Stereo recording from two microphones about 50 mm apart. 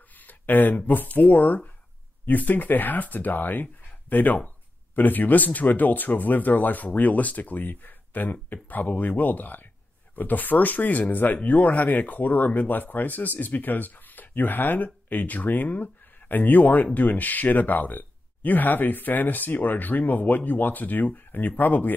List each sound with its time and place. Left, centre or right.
0.3 s speech: left